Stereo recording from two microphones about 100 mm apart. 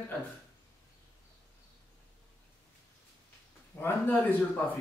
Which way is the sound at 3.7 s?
20° left (ahead or behind).